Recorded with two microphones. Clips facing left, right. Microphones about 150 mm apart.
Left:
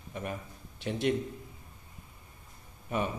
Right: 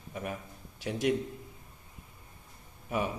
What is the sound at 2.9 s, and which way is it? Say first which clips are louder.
Speech: even; 5° right (ahead or behind).